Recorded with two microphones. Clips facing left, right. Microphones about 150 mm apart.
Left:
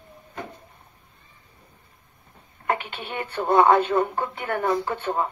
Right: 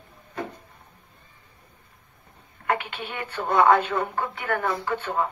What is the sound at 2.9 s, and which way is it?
Speech, 35° left (ahead or behind).